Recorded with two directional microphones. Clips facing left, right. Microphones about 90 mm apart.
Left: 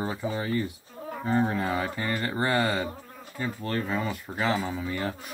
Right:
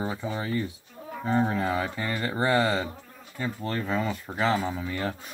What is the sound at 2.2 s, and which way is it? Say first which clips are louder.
Speech: right 3 dB; 10° right (ahead or behind).